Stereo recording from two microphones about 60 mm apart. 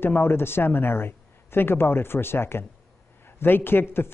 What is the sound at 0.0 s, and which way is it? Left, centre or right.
A woman's voice, left.